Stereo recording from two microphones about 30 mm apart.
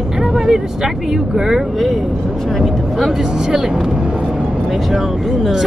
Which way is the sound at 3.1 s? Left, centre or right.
Centre.